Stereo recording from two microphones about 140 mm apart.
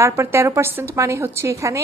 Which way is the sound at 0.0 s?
20° right (ahead or behind).